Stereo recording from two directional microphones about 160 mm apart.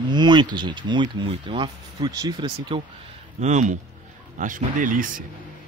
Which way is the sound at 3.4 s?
50° right (ahead or behind).